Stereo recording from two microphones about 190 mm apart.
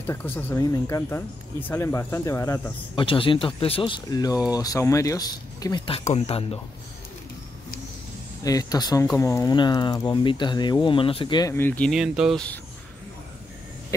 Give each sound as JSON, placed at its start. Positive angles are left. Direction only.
{"t": 0.0, "sound": "speech", "side_deg": 10}
{"t": 3.1, "sound": "speech", "side_deg": 25}
{"t": 5.9, "sound": "speech", "side_deg": 30}
{"t": 8.5, "sound": "speech", "side_deg": 20}
{"t": 11.5, "sound": "speech", "side_deg": 10}